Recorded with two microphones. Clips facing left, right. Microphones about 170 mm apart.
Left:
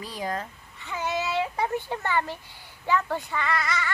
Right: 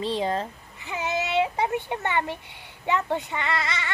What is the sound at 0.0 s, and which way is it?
Speech, 25° right (ahead or behind).